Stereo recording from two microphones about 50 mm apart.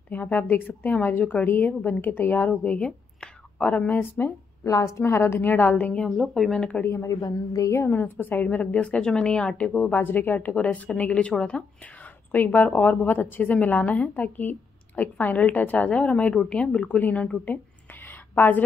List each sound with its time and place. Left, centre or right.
0.1 s a woman's voice: left
0.9 s a woman's voice: left
3.5 s speech: left
4.6 s a woman's voice: left
5.1 s a woman's voice: left
6.0 s speech: centre
6.5 s speech: centre
6.9 s a woman's voice: left
7.8 s a woman's voice: left
8.8 s speech: centre
9.8 s a woman's voice: left
10.5 s speech: left
12.3 s a woman's voice: left
18.0 s a sound: left